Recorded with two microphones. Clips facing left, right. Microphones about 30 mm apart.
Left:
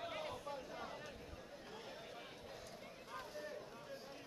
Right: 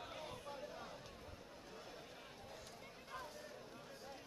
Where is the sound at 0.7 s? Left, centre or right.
Centre.